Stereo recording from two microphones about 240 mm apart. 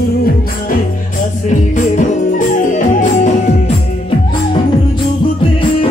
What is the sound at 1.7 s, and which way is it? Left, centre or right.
Music, left.